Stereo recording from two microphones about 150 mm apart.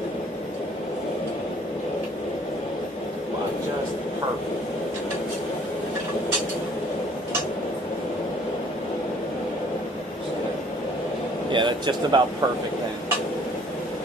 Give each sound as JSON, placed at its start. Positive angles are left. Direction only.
{"t": 11.5, "sound": "speech", "side_deg": -30}